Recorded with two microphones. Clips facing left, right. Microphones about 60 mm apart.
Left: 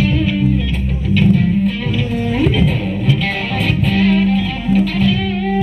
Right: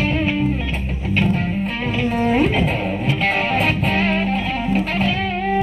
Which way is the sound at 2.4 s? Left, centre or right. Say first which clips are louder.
Left 3 dB; right.